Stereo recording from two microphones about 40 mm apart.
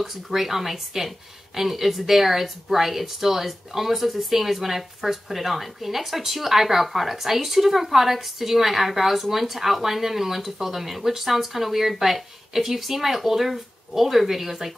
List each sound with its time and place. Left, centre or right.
0.0 s speech: centre